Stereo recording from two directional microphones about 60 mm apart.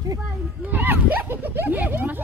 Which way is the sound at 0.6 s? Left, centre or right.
Right.